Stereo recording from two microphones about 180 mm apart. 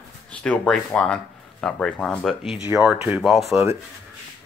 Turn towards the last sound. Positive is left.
turn(degrees=0)  # may be behind; listen again after turning